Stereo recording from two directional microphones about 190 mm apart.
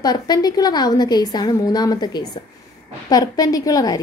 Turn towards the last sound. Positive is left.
turn(degrees=20)  # may be behind; listen again after turning